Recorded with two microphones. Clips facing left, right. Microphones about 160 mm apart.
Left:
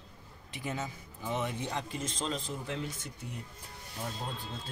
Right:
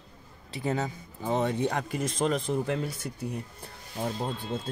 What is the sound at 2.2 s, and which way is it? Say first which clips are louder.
Speech: right 12 dB; 60° right (ahead or behind).